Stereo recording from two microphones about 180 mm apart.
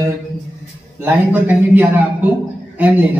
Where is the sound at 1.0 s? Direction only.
10° right (ahead or behind).